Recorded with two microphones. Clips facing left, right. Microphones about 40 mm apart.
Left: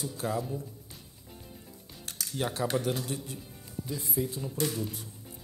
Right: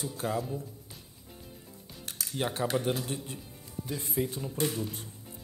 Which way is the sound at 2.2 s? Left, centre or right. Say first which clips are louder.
Even; right.